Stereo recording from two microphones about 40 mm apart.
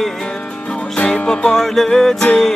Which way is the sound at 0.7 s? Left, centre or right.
Left.